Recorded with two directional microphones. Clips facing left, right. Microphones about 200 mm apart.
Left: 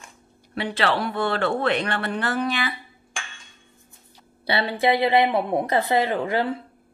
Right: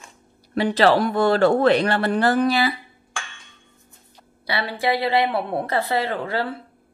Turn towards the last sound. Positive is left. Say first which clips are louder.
# left 2 dB
turn(degrees=15)  # may be behind; listen again after turning